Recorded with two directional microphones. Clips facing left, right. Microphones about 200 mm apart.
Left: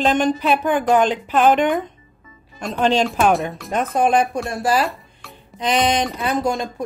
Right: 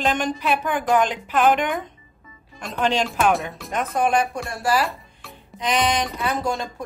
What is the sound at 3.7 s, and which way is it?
A woman's voice, 25° left (ahead or behind).